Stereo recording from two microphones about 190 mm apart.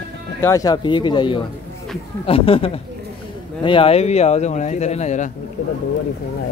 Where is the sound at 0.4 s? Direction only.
15° left (ahead or behind); by 5.3 s 40° left (ahead or behind).